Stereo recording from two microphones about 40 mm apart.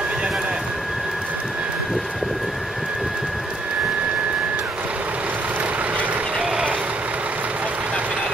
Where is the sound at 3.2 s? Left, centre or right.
Centre.